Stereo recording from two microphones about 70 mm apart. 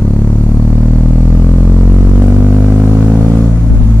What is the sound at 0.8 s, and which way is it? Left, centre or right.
Vehicle, centre.